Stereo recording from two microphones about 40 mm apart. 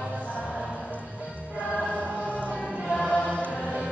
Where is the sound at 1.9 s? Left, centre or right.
Right.